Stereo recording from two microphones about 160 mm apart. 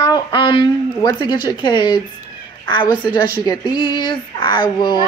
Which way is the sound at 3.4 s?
25° left (ahead or behind).